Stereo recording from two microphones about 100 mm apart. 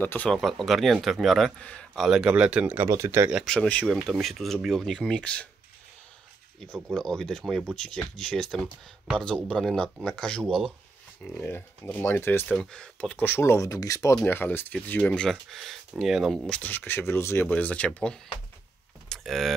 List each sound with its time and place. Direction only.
0.0 s speech: 20° left (ahead or behind)
0.3 s speech: centre (ahead or behind)
2.0 s speech: 10° right (ahead or behind)
2.9 s speech: 30° right (ahead or behind)
3.4 s speech: 10° left (ahead or behind)
3.9 s speech: centre (ahead or behind)
6.6 s speech: 5° left (ahead or behind)
11.2 s speech: 20° left (ahead or behind)
12.5 s speech: 10° left (ahead or behind)
13.2 s speech: 25° left (ahead or behind)
14.1 s speech: 20° left (ahead or behind); by 16.3 s centre (ahead or behind)
16.4 s speech: 15° left (ahead or behind)
17.5 s speech: 15° left (ahead or behind)
19.0 s vehicle: centre (ahead or behind)